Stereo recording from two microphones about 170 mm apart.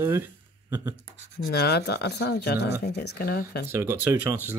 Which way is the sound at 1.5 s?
70° left (ahead or behind).